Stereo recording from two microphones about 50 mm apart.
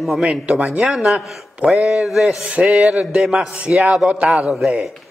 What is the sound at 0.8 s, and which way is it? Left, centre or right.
Speech, centre.